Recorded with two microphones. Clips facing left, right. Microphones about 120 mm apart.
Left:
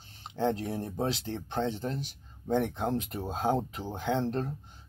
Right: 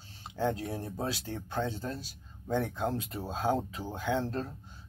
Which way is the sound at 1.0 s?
25° left (ahead or behind).